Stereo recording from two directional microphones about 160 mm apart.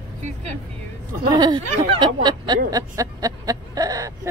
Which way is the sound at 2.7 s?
20° right (ahead or behind).